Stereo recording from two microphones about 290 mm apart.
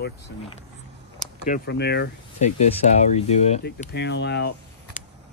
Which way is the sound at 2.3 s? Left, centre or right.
Left.